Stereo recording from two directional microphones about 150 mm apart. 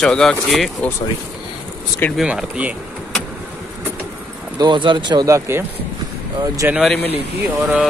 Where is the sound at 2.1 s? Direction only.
5° right (ahead or behind).